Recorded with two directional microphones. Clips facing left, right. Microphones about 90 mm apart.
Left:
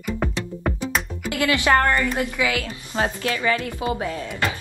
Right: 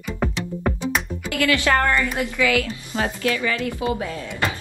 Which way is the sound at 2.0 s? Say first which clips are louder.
Even; 20° right (ahead or behind).